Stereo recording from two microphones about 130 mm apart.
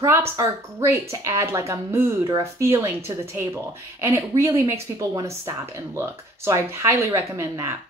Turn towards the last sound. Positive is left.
turn(degrees=-20)  # may be behind; listen again after turning